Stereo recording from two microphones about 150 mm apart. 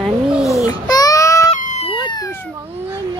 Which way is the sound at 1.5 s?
50° left (ahead or behind).